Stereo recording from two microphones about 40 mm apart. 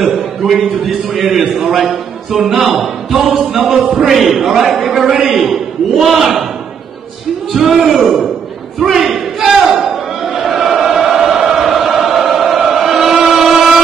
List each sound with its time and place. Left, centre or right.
0.0 s a man's voice: centre
3.6 s music: centre
4.1 s a man's voice: centre
6.1 s music: centre
7.5 s a man's voice: centre
8.7 s a sound: centre
13.2 s vehicle: centre